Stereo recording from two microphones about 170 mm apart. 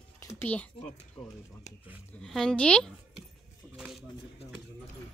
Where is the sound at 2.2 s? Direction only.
5° left (ahead or behind).